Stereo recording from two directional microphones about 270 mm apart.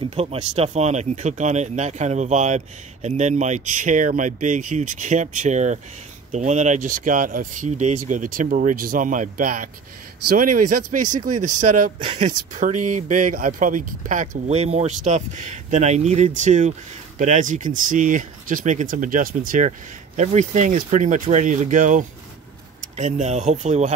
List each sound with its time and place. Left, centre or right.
0.0 s speech: right